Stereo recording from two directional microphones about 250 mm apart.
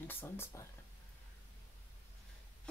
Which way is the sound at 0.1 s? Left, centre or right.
Centre.